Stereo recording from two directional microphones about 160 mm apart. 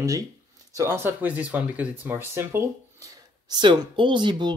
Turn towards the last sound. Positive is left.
turn(degrees=-30)  # may be behind; listen again after turning